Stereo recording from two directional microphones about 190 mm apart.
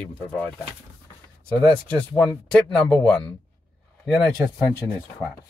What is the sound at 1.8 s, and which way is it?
Speech, 5° left (ahead or behind).